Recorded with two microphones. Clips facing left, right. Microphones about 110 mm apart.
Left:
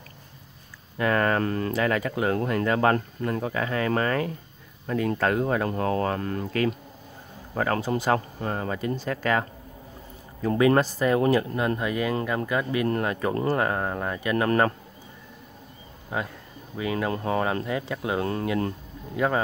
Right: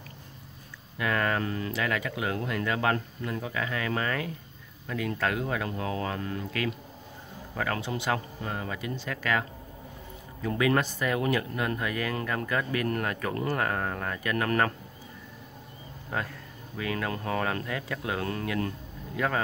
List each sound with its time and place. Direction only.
0.9 s speech: 40° left (ahead or behind)
16.1 s speech: 15° left (ahead or behind)